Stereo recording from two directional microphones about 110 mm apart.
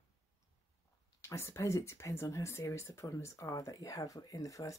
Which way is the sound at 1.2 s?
25° left (ahead or behind).